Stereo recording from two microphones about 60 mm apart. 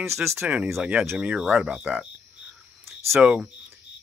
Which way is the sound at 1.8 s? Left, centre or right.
Right.